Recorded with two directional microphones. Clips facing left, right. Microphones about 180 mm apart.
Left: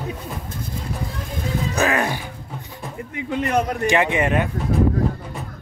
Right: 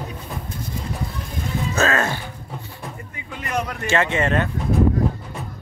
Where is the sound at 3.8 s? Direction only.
15° left (ahead or behind).